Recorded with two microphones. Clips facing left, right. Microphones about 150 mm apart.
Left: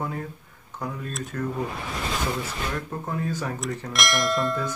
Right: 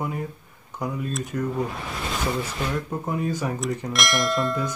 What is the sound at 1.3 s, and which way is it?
Speech, 15° right (ahead or behind).